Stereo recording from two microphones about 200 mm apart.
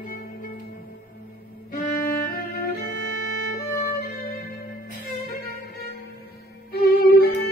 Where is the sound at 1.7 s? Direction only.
45° left (ahead or behind).